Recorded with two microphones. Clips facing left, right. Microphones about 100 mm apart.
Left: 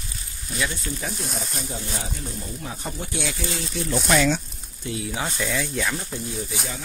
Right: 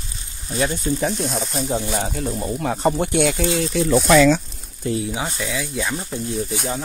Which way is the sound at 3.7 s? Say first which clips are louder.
Right 8 dB; 90° right.